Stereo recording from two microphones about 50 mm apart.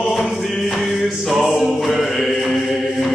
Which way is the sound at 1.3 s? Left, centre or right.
Centre.